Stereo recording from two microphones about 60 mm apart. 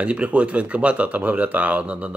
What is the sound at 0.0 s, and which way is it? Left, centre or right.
Speech, right.